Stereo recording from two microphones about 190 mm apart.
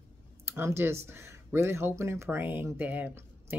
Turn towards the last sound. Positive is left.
turn(degrees=-10)  # may be behind; listen again after turning